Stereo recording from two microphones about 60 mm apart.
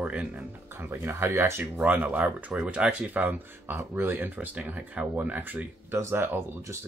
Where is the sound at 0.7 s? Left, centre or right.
Right.